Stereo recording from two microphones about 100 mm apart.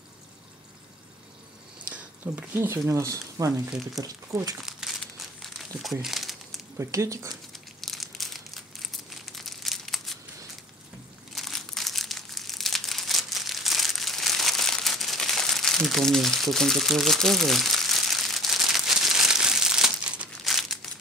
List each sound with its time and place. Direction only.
2.2 s speech: 20° right (ahead or behind)
4.6 s crumpling: 5° right (ahead or behind)
6.8 s speech: 30° right (ahead or behind)
7.8 s crumpling: centre (ahead or behind)
11.3 s crumpling: centre (ahead or behind)